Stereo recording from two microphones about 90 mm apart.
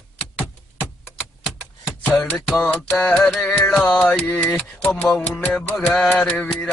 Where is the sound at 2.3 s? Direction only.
5° left (ahead or behind).